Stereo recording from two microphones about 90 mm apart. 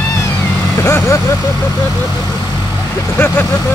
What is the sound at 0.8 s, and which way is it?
Vehicle, 30° left (ahead or behind).